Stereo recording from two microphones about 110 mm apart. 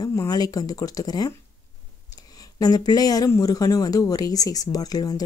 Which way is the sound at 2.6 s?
35° left (ahead or behind).